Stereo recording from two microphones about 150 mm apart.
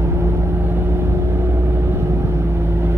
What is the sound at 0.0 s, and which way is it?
Vehicle, 15° right (ahead or behind).